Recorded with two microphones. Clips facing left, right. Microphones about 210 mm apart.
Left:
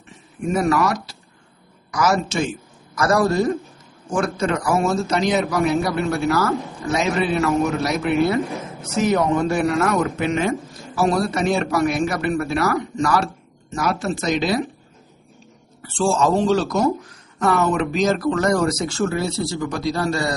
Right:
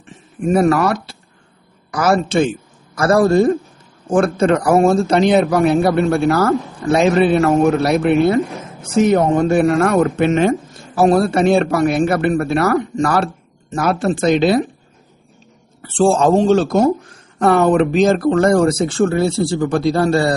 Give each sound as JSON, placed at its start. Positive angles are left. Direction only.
{"t": 0.6, "sound": "speech", "side_deg": -55}
{"t": 2.4, "sound": "a sound", "side_deg": -30}
{"t": 4.1, "sound": "speech", "side_deg": -55}
{"t": 8.5, "sound": "a sound", "side_deg": 0}
{"t": 8.8, "sound": "speech", "side_deg": -30}
{"t": 9.1, "sound": "speech", "side_deg": -50}
{"t": 15.8, "sound": "speech", "side_deg": -55}
{"t": 18.6, "sound": "speech", "side_deg": -30}
{"t": 19.8, "sound": "speech", "side_deg": -55}
{"t": 20.1, "sound": "speech", "side_deg": -30}